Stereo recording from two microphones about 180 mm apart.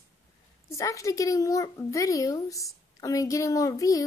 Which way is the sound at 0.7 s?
15° left (ahead or behind).